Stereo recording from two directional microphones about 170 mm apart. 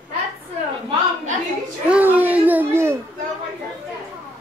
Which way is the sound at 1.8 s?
10° right (ahead or behind).